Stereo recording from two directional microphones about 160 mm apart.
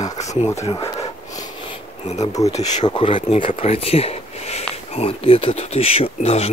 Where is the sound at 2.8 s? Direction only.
30° left (ahead or behind).